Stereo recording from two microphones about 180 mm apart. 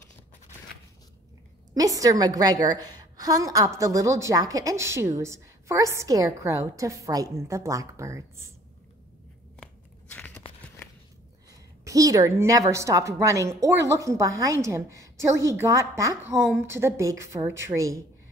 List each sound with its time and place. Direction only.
1.7 s a woman's voice: 20° right (ahead or behind)
9.6 s tearing: 10° left (ahead or behind)
11.8 s a woman's voice: 20° right (ahead or behind)